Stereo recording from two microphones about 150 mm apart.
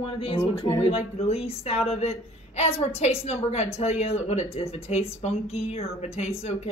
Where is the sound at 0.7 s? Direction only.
40° left (ahead or behind).